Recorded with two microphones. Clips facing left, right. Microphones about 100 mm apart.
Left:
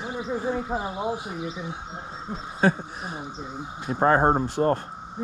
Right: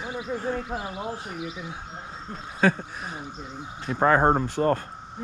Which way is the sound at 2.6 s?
15° left (ahead or behind).